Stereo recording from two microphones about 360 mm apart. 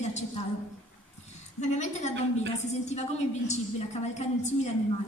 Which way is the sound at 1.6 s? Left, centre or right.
Centre.